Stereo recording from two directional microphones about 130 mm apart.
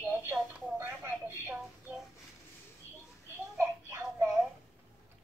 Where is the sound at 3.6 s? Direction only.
20° right (ahead or behind).